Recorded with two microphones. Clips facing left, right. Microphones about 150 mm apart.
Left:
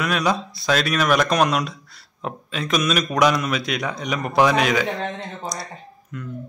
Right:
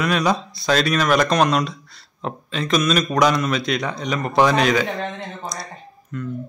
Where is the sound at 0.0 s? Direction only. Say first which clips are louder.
Right 2 dB; 5° left (ahead or behind).